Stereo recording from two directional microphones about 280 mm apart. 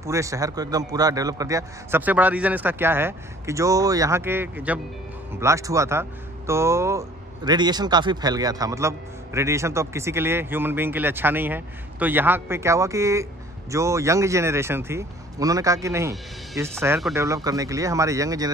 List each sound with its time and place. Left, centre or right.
0.0 s speech: centre